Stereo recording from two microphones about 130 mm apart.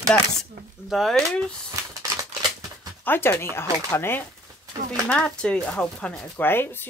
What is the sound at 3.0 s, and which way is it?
Speech, 15° left (ahead or behind).